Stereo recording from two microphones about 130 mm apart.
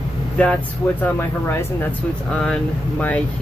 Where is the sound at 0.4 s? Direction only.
10° left (ahead or behind).